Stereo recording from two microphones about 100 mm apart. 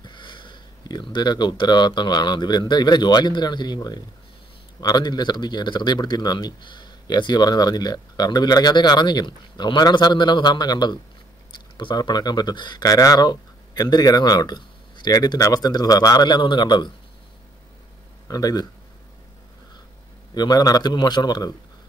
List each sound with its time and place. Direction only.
0.0 s speech: 50° left (ahead or behind)
18.3 s a man's voice: 40° left (ahead or behind)
20.3 s a man's voice: 40° left (ahead or behind)